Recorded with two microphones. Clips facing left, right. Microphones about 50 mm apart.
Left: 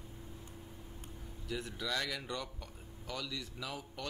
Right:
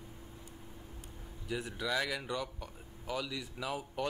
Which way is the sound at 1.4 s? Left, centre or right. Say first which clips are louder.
Right 3 dB; centre.